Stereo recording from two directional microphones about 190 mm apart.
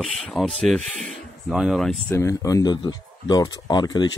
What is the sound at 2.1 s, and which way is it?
Speech, 15° left (ahead or behind).